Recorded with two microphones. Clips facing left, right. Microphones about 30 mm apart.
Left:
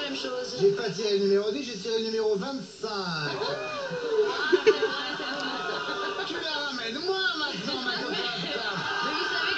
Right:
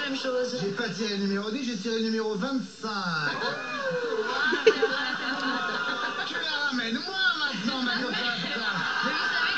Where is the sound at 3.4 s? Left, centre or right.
Centre.